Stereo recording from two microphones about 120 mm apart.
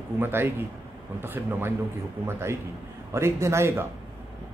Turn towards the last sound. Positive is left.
turn(degrees=-20)  # may be behind; listen again after turning